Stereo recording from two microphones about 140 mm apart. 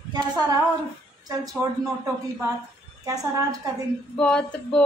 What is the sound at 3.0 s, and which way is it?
Speech, 25° right (ahead or behind).